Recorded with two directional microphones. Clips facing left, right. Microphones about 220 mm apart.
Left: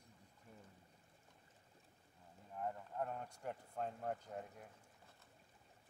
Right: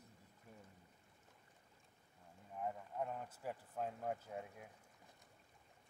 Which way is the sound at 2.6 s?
5° right (ahead or behind).